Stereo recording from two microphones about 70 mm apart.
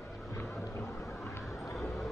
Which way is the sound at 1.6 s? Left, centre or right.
Centre.